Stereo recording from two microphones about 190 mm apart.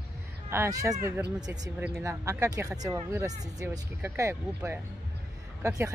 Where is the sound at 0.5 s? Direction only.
15° right (ahead or behind).